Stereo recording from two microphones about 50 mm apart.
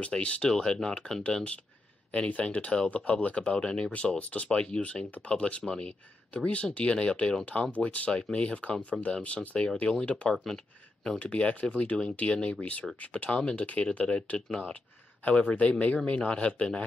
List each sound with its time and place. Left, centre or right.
0.0 s speech: left
2.0 s speech: left
11.1 s speech: left